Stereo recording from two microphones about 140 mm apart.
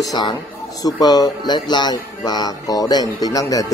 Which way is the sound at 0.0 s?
30° left (ahead or behind).